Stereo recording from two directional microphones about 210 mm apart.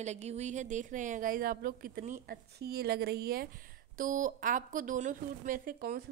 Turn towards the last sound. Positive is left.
turn(degrees=-40)  # may be behind; listen again after turning